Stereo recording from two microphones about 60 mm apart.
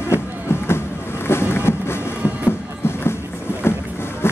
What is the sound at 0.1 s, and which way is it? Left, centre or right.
Music, left.